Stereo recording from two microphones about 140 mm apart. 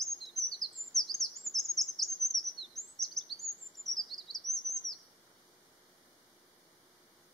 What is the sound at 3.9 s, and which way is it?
Bird vocalization, 20° right (ahead or behind).